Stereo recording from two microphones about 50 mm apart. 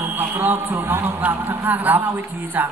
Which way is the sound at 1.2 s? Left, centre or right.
Right.